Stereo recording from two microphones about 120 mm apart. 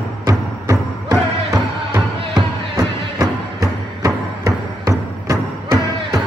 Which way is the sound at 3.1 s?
30° right (ahead or behind).